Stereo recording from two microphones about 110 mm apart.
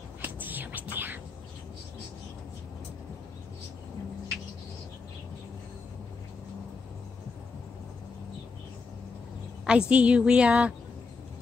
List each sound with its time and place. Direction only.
0.2 s whispering: 15° right (ahead or behind)
9.7 s a woman's voice: 10° right (ahead or behind)